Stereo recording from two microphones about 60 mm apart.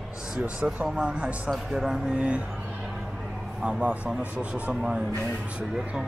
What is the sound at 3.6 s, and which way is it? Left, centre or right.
Speech, right.